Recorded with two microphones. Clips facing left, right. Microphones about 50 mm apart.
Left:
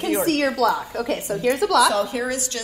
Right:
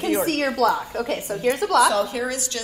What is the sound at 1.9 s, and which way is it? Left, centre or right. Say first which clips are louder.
Speech: even; left.